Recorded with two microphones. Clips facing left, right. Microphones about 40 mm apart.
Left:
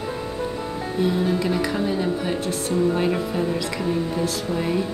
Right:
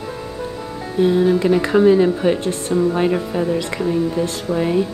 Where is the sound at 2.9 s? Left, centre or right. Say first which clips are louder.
Right 4 dB; centre.